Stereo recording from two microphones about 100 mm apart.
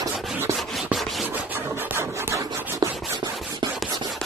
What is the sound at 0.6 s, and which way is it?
Rub, centre (ahead or behind).